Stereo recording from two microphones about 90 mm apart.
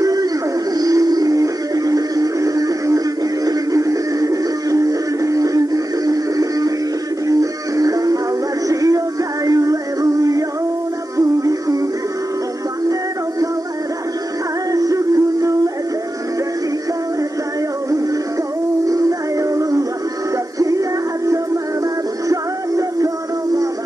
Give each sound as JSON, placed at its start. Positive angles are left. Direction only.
{"t": 0.0, "sound": "music", "side_deg": -45}
{"t": 11.1, "sound": "music", "side_deg": -40}
{"t": 14.7, "sound": "music", "side_deg": -40}
{"t": 18.9, "sound": "music", "side_deg": -40}
{"t": 22.3, "sound": "music", "side_deg": -40}